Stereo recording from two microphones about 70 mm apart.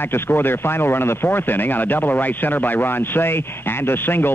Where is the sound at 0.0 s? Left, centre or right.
Left.